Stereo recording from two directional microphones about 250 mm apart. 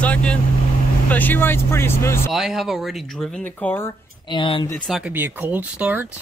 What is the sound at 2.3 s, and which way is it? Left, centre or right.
Speech, centre.